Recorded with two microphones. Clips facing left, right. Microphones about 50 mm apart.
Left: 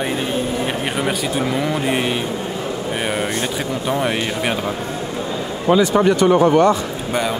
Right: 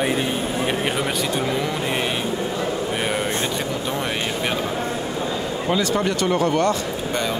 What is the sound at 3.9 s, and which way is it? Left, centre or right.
Speech, centre.